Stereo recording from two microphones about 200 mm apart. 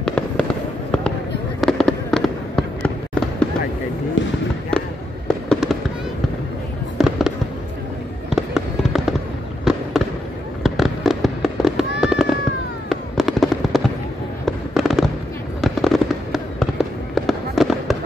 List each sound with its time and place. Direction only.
0.0 s fireworks: 5° left (ahead or behind)
1.6 s fireworks: 5° left (ahead or behind)
4.2 s fireworks: 65° left (ahead or behind)
5.5 s fireworks: centre (ahead or behind)
7.0 s fireworks: centre (ahead or behind)